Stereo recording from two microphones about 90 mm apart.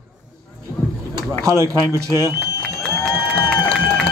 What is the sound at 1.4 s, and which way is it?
Speech, 35° right (ahead or behind).